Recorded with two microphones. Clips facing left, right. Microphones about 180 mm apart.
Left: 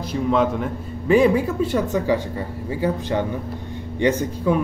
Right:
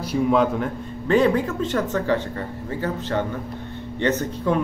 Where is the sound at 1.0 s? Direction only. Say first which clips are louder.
Left 2 dB; 10° left (ahead or behind).